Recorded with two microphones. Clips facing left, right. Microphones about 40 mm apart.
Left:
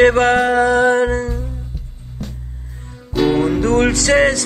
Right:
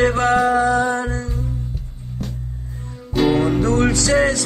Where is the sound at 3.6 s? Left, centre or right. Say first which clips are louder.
Left 3 dB; left.